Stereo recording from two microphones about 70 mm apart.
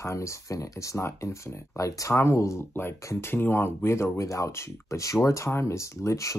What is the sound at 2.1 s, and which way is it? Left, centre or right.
Speech, left.